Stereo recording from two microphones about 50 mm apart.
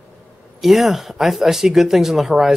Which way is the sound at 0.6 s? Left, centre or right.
Centre.